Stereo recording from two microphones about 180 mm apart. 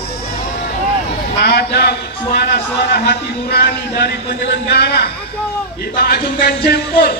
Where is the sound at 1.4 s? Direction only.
65° left (ahead or behind).